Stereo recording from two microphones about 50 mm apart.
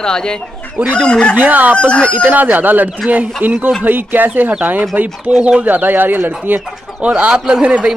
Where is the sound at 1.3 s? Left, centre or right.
Right.